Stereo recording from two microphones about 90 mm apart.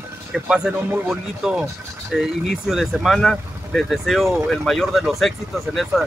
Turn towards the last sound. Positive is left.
turn(degrees=0)  # may be behind; listen again after turning